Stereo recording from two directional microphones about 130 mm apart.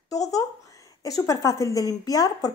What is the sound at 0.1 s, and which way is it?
Speech, 25° left (ahead or behind).